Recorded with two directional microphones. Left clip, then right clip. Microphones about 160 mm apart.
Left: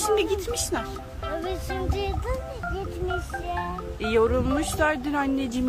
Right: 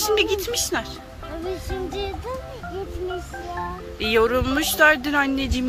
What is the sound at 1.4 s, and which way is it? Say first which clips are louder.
Music: right 1 dB; 30° left (ahead or behind).